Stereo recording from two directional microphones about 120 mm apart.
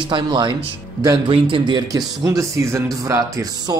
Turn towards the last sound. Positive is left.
turn(degrees=-30)  # may be behind; listen again after turning